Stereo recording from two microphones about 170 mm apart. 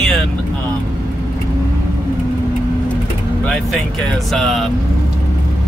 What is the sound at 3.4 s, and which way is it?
Speech, 5° left (ahead or behind).